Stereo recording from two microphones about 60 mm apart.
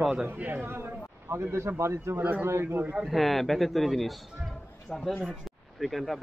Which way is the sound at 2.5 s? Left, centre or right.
Right.